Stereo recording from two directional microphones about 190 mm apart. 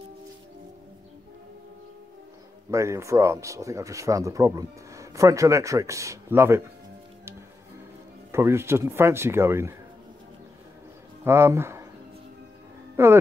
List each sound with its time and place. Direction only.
2.7 s speech: 15° right (ahead or behind)
8.3 s speech: 15° right (ahead or behind)
11.2 s speech: 15° right (ahead or behind)
12.9 s speech: 15° right (ahead or behind)